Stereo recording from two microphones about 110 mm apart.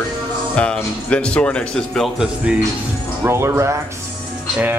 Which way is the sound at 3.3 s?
25° right (ahead or behind).